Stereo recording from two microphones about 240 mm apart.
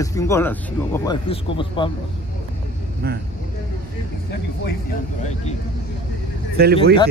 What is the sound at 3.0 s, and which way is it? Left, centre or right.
Speech, right.